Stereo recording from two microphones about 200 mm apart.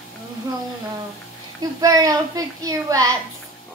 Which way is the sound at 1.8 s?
20° right (ahead or behind).